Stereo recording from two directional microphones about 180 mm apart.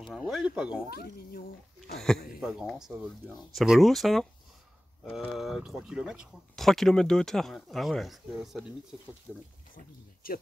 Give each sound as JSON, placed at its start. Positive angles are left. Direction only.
{"t": 0.3, "sound": "speech", "side_deg": -5}
{"t": 2.4, "sound": "speech", "side_deg": 0}
{"t": 9.8, "sound": "speech", "side_deg": 55}